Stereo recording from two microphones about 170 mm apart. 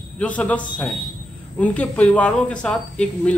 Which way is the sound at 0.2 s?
5° left (ahead or behind).